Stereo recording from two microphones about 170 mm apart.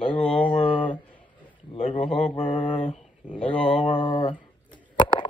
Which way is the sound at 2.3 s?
40° left (ahead or behind).